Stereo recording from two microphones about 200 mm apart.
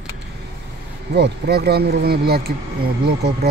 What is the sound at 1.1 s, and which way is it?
Speech, 55° right (ahead or behind).